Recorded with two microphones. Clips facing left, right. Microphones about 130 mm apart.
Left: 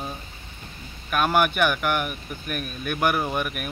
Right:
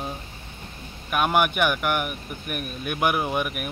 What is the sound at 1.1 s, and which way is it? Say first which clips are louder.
Speech: even; 10° right (ahead or behind).